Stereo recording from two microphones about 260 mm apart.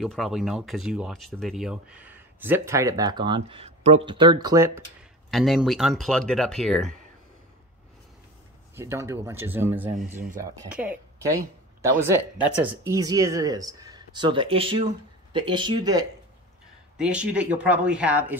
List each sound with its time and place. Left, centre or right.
0.0 s speech: centre
5.3 s speech: centre
8.7 s a woman's voice: centre
16.9 s speech: centre